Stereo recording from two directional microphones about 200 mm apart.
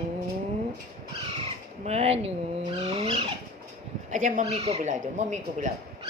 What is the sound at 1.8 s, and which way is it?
Vehicle, 30° right (ahead or behind).